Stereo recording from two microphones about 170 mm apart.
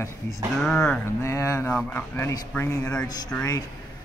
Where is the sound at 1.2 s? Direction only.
15° left (ahead or behind).